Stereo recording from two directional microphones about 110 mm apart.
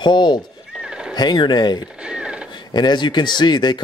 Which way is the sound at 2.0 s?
10° right (ahead or behind).